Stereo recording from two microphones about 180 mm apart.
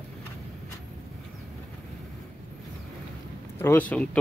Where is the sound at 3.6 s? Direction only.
10° left (ahead or behind).